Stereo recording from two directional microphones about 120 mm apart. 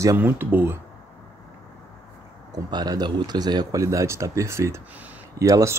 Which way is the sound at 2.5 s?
35° right (ahead or behind).